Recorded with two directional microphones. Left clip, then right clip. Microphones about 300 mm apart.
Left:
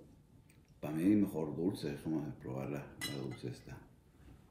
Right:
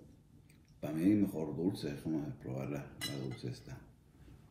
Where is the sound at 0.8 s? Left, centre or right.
Centre.